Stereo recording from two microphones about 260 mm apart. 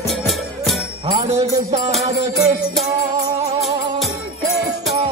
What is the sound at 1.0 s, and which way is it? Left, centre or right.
Music, right.